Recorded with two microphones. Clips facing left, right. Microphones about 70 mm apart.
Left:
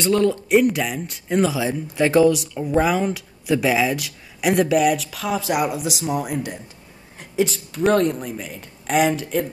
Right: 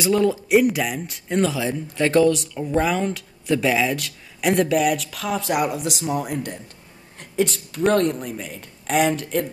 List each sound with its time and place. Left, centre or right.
0.0 s speech: centre